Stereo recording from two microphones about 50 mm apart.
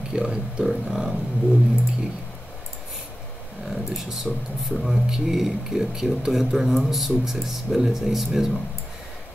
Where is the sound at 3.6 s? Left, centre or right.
Centre.